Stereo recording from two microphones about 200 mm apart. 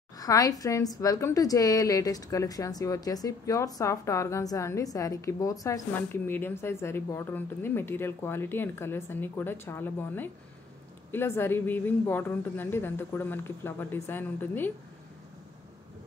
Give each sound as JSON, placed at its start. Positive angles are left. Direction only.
{"t": 0.2, "sound": "a woman's voice", "side_deg": 20}